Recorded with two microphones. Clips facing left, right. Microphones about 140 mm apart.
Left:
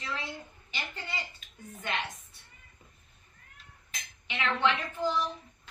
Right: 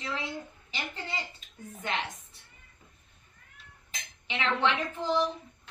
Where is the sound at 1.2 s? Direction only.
Centre (ahead or behind).